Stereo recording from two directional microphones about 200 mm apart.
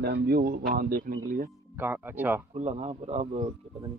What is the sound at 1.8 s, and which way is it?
Speech, 10° right (ahead or behind).